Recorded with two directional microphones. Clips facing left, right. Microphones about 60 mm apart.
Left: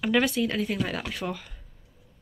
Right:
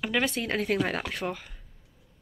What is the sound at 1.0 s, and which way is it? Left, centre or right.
Speech, right.